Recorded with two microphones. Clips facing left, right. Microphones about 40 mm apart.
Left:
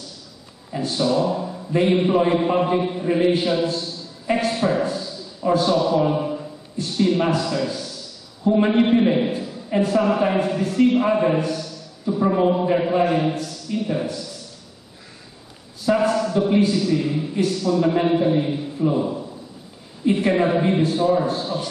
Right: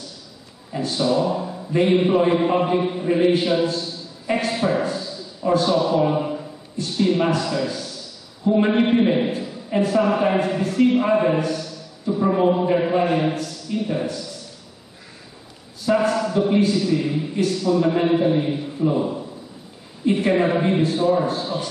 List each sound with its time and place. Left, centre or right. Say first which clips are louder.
0.7 s a man's voice: even; centre
15.8 s a man's voice: even; centre